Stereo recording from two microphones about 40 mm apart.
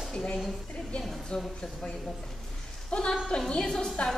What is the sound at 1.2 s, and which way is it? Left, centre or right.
Speech, centre.